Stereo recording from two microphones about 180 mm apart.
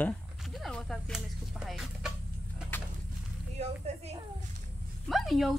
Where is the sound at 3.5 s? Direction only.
35° right (ahead or behind).